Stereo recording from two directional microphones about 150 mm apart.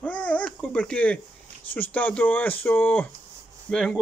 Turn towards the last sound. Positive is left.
turn(degrees=5)  # may be behind; listen again after turning